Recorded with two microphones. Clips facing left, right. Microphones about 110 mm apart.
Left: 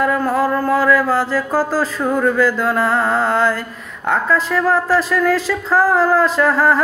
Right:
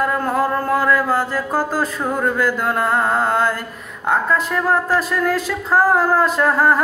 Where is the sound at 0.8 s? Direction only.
20° right (ahead or behind).